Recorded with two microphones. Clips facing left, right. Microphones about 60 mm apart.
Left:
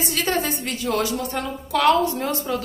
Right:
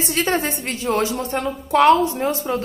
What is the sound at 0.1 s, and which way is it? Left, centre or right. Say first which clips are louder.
A woman's voice: right 3 dB; right.